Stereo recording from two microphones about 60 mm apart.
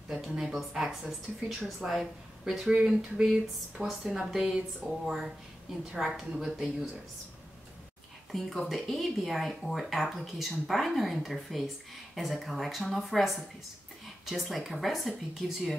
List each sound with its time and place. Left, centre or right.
0.1 s speech: centre
8.3 s speech: centre